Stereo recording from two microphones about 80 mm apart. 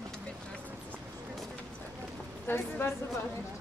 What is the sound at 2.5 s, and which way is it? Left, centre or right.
Speech, left.